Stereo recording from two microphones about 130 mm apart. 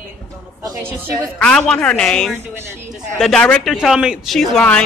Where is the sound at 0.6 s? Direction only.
25° right (ahead or behind).